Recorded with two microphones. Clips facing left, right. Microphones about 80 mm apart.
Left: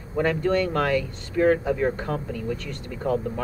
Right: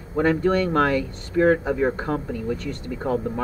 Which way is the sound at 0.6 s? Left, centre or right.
Right.